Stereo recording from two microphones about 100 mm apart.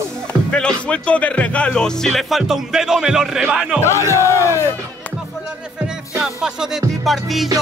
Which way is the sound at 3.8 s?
30° left (ahead or behind).